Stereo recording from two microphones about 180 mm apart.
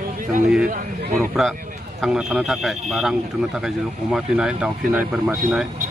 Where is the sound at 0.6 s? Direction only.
50° right (ahead or behind).